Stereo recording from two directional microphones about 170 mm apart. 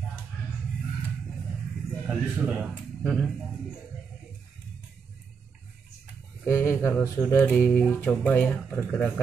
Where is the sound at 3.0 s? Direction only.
10° left (ahead or behind).